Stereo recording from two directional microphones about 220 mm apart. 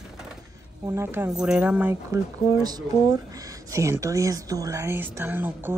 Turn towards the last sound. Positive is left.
turn(degrees=-10)  # may be behind; listen again after turning